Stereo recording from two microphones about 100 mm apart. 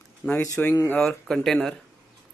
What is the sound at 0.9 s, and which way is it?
Speech, 5° left (ahead or behind).